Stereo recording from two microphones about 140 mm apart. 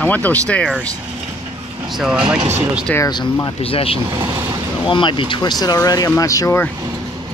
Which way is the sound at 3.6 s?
40° left (ahead or behind).